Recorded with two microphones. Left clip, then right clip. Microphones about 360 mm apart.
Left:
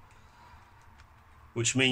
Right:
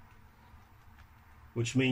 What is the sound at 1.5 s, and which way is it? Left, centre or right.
Speech, left.